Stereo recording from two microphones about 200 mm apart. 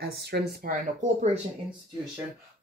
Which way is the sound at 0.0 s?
55° right (ahead or behind).